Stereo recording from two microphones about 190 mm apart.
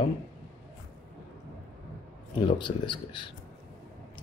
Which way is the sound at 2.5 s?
25° left (ahead or behind).